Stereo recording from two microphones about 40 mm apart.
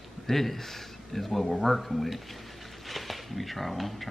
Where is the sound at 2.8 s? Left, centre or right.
Centre.